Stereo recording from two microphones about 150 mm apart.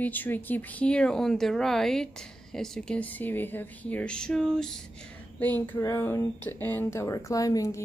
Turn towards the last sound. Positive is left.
turn(degrees=20)  # may be behind; listen again after turning